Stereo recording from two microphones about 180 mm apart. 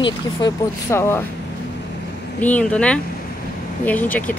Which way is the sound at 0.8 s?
15° left (ahead or behind).